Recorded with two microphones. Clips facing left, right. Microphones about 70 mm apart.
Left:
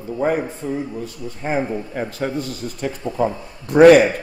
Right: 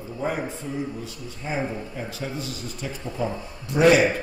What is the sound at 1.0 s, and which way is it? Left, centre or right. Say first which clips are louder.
Speech: left 7 dB; left.